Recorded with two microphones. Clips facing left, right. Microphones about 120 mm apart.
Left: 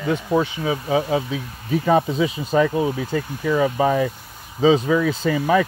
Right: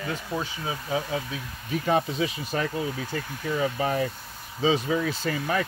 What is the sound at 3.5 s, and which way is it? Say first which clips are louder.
Speech: left 7 dB; 90° left.